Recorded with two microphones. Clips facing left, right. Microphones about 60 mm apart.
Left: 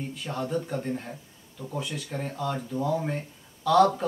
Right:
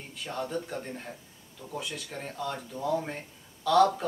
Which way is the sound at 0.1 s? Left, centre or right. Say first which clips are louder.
Left 1 dB; centre.